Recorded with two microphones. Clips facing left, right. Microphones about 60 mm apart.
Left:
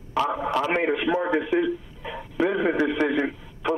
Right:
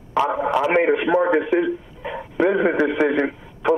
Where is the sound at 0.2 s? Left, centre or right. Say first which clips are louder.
Right 5 dB; right.